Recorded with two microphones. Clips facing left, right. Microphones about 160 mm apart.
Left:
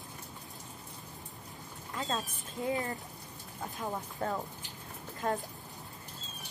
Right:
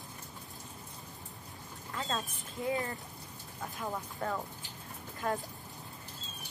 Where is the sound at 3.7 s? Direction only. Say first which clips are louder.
Left 1 dB; 20° left (ahead or behind).